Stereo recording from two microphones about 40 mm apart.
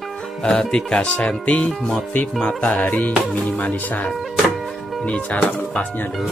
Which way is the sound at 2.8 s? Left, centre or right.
Left.